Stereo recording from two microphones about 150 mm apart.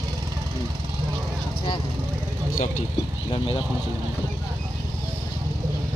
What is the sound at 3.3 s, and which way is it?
Vehicle, 35° left (ahead or behind).